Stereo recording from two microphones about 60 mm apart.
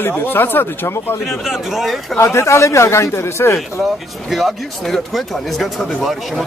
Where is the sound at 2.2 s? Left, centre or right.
Left.